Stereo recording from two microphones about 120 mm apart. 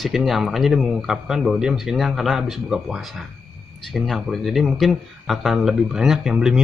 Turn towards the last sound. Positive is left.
turn(degrees=-5)  # may be behind; listen again after turning